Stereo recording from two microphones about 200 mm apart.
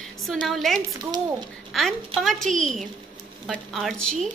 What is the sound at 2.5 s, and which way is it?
Speech, 35° right (ahead or behind).